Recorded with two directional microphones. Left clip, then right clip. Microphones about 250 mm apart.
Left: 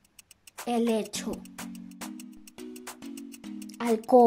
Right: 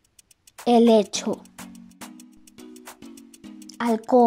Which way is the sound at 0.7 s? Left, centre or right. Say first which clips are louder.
Right 11 dB; centre.